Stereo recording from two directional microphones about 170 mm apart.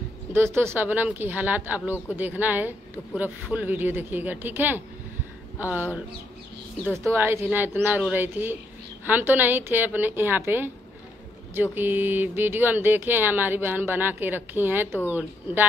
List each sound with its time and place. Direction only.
0.3 s speech: 15° right (ahead or behind)
7.1 s speech: 15° right (ahead or behind)